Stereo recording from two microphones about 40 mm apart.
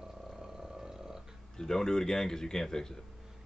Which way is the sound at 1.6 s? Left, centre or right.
Centre.